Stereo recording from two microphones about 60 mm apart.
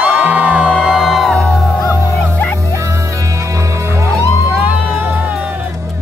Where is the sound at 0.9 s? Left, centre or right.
Centre.